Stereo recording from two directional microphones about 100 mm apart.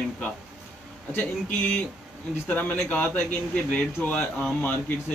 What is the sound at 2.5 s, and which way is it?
Speech, 15° left (ahead or behind).